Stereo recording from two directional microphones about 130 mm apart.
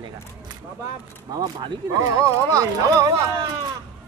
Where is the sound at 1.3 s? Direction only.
35° right (ahead or behind).